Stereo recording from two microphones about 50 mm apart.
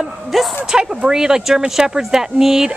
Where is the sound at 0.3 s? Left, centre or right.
Centre.